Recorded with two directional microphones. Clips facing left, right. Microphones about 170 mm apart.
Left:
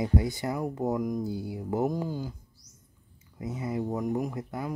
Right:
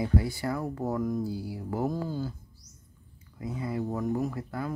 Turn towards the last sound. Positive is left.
turn(degrees=20)  # may be behind; listen again after turning